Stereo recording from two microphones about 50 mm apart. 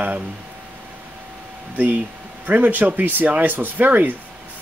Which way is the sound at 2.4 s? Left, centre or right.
Right.